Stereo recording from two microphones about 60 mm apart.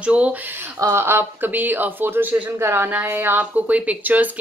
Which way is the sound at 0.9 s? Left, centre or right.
Right.